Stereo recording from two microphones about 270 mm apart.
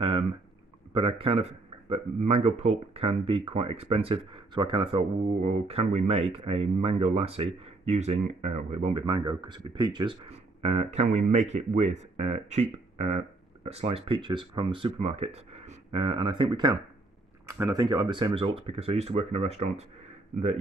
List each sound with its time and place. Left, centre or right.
0.9 s speech: centre